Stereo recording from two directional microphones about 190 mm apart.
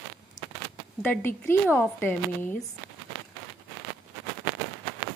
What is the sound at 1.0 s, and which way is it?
Speech, 10° left (ahead or behind).